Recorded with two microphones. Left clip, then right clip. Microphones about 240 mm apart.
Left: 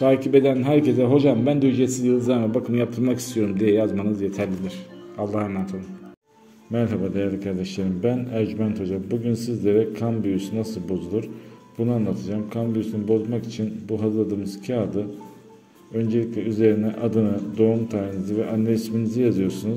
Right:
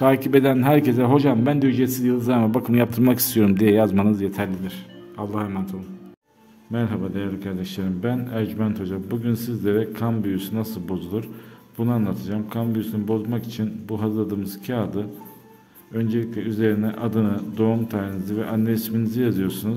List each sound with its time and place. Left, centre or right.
0.0 s a man's voice: right